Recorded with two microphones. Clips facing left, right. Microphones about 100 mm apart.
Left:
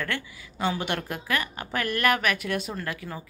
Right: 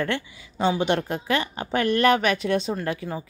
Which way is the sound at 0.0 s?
25° right (ahead or behind).